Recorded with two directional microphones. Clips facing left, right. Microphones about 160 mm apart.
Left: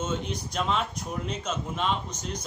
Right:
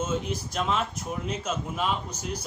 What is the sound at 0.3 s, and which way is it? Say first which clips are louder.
A man's voice: right 1 dB; centre (ahead or behind).